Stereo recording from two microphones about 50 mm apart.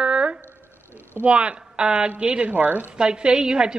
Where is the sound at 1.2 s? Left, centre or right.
Right.